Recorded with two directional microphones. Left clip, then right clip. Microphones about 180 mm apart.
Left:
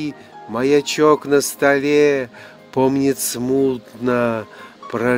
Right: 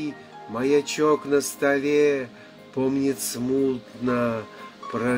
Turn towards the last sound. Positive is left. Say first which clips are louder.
# left 7 dB
turn(degrees=65)  # may be behind; listen again after turning